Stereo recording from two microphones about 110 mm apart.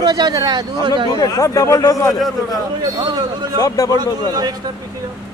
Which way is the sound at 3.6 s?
30° left (ahead or behind).